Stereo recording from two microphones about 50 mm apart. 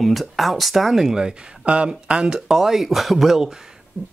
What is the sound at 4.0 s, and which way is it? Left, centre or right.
Beatboxing, left.